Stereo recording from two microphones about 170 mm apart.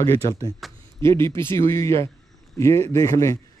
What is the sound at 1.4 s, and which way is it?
Speech, 15° left (ahead or behind).